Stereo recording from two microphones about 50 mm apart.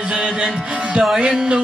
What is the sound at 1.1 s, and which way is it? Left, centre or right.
Music, centre.